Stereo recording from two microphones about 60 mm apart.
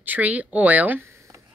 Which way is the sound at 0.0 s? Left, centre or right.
Right.